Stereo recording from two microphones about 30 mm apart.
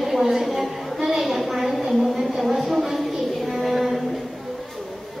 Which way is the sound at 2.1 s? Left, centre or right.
Centre.